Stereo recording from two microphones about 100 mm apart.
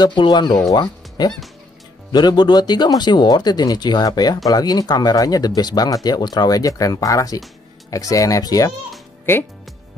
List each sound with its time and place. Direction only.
0.0 s speech: 50° left (ahead or behind)
9.3 s speech: 25° left (ahead or behind)